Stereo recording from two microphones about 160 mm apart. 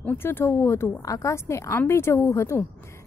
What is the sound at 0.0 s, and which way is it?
A woman's voice, 10° left (ahead or behind).